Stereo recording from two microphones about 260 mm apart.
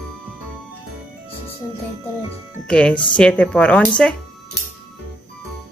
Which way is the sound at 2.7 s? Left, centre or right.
Centre.